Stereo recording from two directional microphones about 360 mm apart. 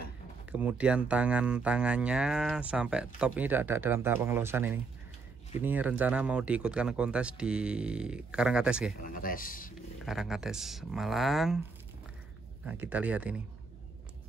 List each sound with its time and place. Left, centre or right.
0.5 s speech: centre
9.0 s speech: left
10.0 s speech: centre
12.6 s speech: centre